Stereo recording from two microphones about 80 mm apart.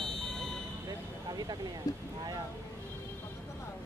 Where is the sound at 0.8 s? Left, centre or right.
Right.